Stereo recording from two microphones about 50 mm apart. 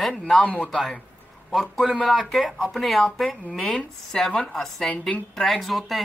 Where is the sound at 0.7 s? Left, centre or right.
Centre.